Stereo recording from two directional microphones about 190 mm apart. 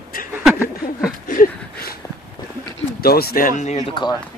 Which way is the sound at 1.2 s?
45° left (ahead or behind).